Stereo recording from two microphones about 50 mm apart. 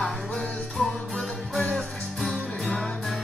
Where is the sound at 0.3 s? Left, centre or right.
Left.